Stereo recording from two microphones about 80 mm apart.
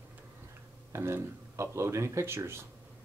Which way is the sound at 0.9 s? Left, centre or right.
Right.